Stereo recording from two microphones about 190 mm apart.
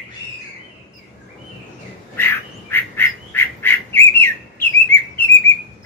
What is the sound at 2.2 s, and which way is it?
Duck, 10° left (ahead or behind).